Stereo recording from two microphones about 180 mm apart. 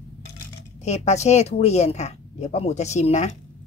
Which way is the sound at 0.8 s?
35° left (ahead or behind).